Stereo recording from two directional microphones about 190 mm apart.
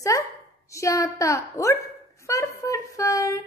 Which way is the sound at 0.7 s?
15° left (ahead or behind).